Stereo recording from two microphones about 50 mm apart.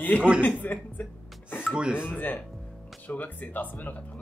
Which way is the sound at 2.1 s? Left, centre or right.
Left.